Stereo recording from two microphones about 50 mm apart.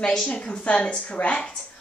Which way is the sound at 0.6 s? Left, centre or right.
Centre.